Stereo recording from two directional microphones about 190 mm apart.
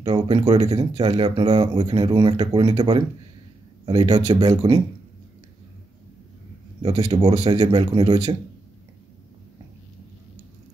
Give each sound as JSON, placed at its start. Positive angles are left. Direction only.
{"t": 0.0, "sound": "speech", "side_deg": -25}
{"t": 6.8, "sound": "speech", "side_deg": -30}